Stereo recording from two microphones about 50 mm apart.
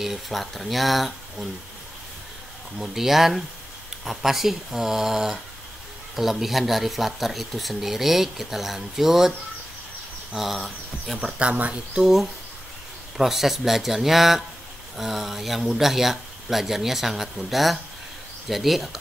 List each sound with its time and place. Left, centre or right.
0.0 s speech: centre
2.8 s speech: centre
10.3 s speech: centre
11.3 s speech: right
12.0 s speech: centre